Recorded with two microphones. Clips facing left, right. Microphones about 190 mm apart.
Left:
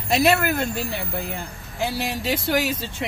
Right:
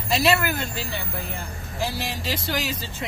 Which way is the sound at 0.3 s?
Centre (ahead or behind).